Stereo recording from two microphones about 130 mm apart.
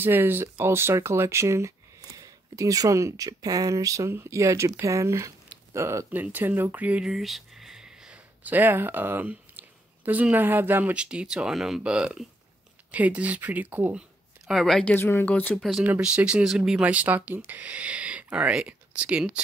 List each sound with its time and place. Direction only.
0.0 s speech: 15° right (ahead or behind)
14.5 s speech: centre (ahead or behind)
15.0 s speech: 15° left (ahead or behind)
15.8 s speech: 10° right (ahead or behind)